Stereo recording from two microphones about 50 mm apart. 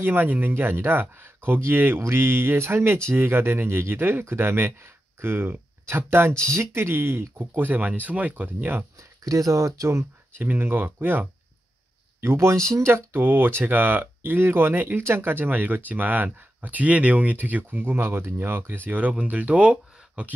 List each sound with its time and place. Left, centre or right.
0.0 s speech: right
6.0 s speech: right
9.5 s speech: right
10.5 s speech: right
12.2 s speech: right
12.9 s speech: right
18.9 s speech: right